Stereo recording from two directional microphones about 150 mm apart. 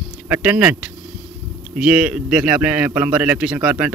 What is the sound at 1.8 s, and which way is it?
A man's voice, 5° right (ahead or behind).